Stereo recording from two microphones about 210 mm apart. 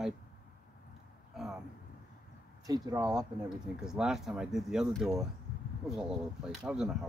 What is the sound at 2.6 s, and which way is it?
Speech, 15° right (ahead or behind).